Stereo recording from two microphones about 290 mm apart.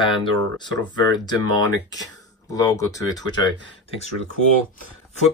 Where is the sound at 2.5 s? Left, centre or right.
Centre.